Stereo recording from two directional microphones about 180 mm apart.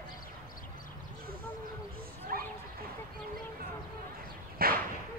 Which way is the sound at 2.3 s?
55° right (ahead or behind).